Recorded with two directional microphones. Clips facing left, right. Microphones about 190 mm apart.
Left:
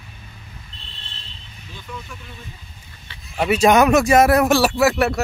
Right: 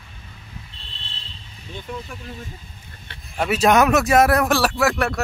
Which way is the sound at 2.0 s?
40° right (ahead or behind).